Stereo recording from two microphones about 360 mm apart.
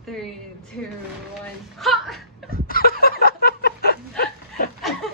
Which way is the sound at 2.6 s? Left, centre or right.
Left.